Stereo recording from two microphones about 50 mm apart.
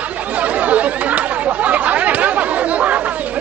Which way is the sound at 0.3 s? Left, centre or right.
Right.